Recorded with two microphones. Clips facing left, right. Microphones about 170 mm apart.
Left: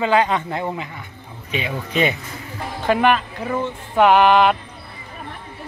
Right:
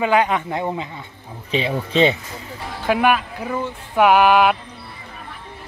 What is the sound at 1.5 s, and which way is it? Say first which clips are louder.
Speech: right 4 dB; 30° right (ahead or behind).